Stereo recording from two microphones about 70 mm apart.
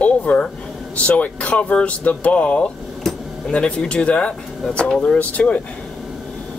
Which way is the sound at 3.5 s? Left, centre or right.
Centre.